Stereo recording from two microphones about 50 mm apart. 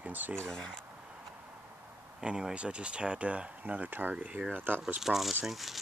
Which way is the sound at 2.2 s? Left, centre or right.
Centre.